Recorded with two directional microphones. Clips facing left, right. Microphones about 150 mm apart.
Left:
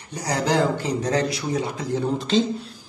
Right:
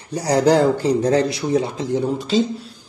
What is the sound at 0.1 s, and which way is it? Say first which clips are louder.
Speech: right 7 dB; 35° right (ahead or behind).